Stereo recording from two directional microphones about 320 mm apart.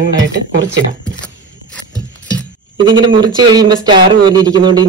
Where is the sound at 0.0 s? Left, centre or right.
Right.